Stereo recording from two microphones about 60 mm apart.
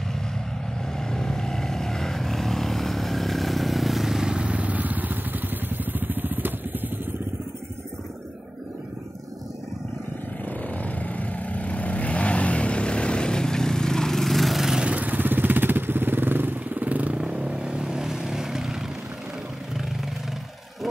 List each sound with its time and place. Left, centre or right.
0.9 s vehicle: centre; by 6.9 s right
10.8 s vehicle: left; by 14.9 s centre
14.9 s motorcycle: right; by 18.9 s centre